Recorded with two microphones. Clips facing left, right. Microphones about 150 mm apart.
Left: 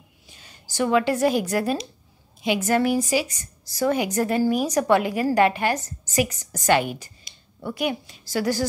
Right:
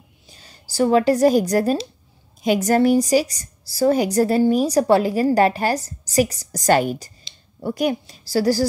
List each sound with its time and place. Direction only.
0.3 s a woman's voice: 35° right (ahead or behind)